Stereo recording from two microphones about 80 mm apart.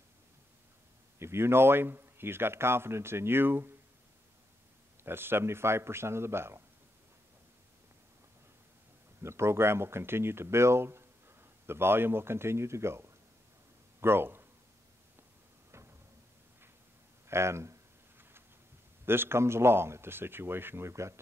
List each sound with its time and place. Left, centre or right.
1.2 s speech: right
5.0 s a man's voice: right
9.2 s speech: right
17.3 s a sound: right
19.0 s a man's voice: right